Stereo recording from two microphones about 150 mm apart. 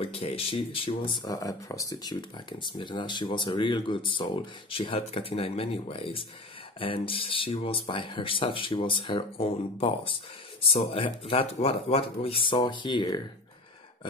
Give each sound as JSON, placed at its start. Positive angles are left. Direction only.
{"t": 0.0, "sound": "speech", "side_deg": 40}